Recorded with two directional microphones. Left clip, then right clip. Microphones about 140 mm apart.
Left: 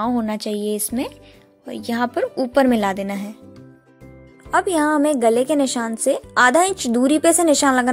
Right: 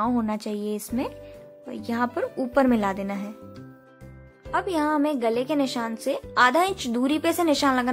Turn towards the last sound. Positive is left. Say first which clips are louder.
# left 6 dB
turn(degrees=25)  # may be behind; listen again after turning